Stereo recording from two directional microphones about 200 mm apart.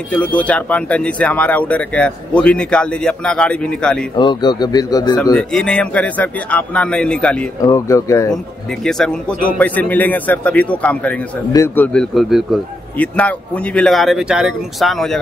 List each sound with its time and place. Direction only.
0.1 s speech: 5° left (ahead or behind)
4.2 s speech: 20° left (ahead or behind)
5.3 s speech: 5° left (ahead or behind)
7.6 s speech: 15° left (ahead or behind)
8.8 s speech: 5° left (ahead or behind)